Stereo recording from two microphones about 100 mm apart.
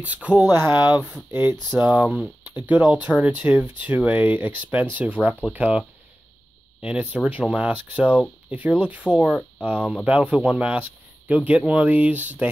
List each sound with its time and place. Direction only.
0.0 s speech: 15° right (ahead or behind)